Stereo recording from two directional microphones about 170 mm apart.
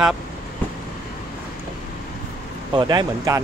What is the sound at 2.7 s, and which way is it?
Speech, 25° right (ahead or behind).